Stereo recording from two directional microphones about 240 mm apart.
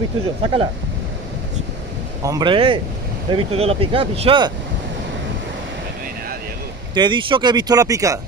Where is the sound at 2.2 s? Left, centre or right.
Centre.